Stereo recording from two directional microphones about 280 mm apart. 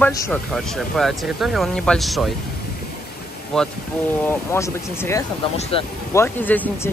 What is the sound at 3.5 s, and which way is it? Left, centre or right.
Speech, centre.